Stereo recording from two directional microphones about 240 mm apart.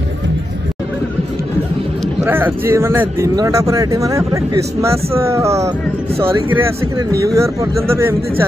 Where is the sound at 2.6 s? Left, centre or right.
Centre.